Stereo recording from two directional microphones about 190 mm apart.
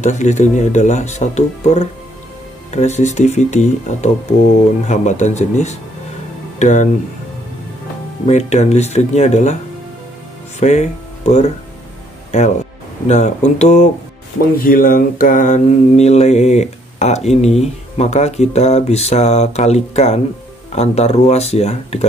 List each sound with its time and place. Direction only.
0.0 s mantra: 40° left (ahead or behind)
8.3 s mantra: 35° left (ahead or behind)
10.6 s speech: 35° left (ahead or behind)
13.1 s mantra: 35° left (ahead or behind)
14.6 s mantra: 50° left (ahead or behind)